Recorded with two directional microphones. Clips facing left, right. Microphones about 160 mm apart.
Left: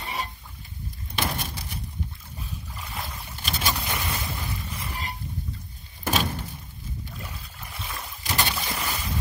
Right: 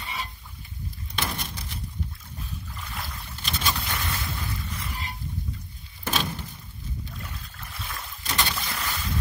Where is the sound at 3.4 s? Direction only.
15° left (ahead or behind).